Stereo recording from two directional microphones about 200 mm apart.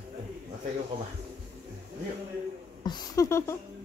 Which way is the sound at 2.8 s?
20° left (ahead or behind).